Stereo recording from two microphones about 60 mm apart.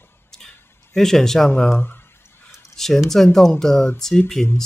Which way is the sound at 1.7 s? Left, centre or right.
Left.